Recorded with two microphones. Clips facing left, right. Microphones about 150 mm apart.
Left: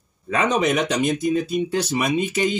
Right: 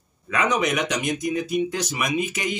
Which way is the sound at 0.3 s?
30° left (ahead or behind).